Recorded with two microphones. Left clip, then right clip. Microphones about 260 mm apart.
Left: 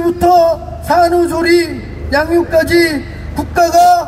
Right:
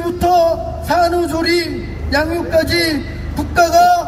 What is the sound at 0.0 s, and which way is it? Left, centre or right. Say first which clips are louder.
A man's voice: left 4 dB; centre.